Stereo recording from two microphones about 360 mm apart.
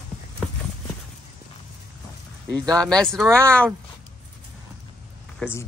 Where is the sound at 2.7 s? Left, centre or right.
Centre.